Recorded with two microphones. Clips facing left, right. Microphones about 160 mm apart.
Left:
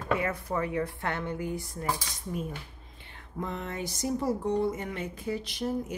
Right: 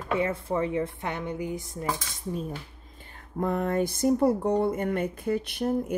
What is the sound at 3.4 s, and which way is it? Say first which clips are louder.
Speech: right 9 dB; 50° right (ahead or behind).